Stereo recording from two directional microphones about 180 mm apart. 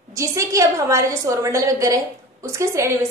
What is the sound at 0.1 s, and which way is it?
A woman's voice, 15° right (ahead or behind).